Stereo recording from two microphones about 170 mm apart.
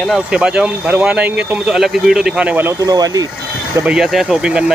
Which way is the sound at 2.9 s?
20° right (ahead or behind).